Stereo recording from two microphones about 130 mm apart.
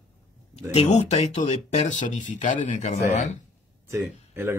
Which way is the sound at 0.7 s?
55° left (ahead or behind).